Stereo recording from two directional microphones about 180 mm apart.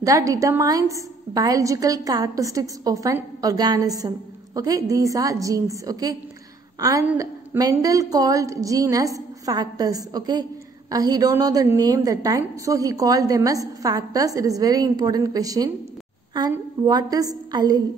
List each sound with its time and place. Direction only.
0.0 s a woman's voice: 15° right (ahead or behind)